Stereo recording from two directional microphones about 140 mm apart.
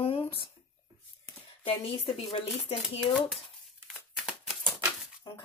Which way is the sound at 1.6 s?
40° left (ahead or behind).